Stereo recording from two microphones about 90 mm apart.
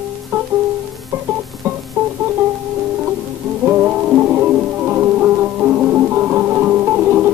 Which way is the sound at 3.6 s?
25° right (ahead or behind).